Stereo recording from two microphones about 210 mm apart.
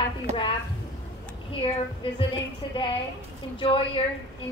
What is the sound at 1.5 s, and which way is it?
A woman's voice, 25° left (ahead or behind).